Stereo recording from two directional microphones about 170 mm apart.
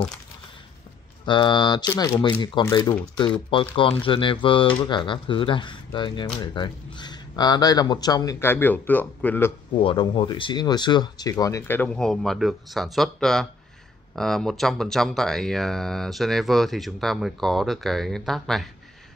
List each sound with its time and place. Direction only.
1.2 s speech: 25° left (ahead or behind); by 9.5 s 10° left (ahead or behind)
9.8 s speech: 30° left (ahead or behind); by 18.7 s centre (ahead or behind)